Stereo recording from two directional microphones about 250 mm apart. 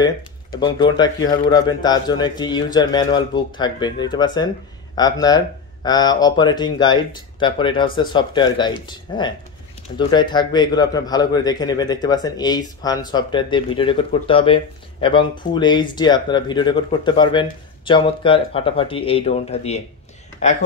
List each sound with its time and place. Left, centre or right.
0.0 s a man's voice: centre